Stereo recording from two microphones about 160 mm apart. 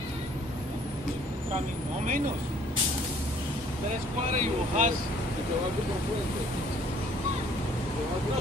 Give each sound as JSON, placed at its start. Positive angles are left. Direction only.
{"t": 4.4, "sound": "speech", "side_deg": -55}